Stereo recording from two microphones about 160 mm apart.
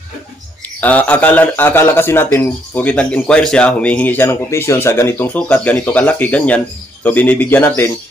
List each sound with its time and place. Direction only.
0.7 s a man's voice: 10° left (ahead or behind)